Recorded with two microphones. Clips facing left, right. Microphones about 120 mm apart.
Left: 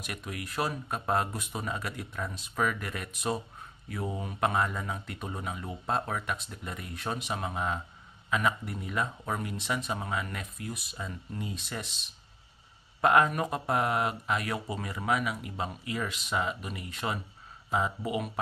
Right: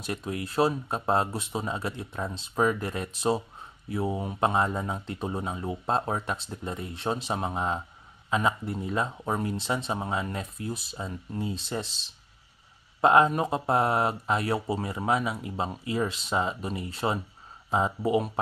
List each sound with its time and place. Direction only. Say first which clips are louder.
0.0 s speech: right 6 dB; 30° right (ahead or behind)